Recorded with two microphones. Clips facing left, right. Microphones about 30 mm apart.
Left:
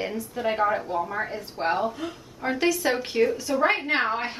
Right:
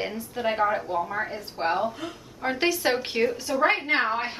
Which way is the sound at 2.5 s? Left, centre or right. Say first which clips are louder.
Left 1 dB; right.